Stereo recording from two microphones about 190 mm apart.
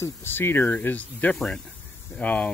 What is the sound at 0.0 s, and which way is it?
Speech, 10° left (ahead or behind).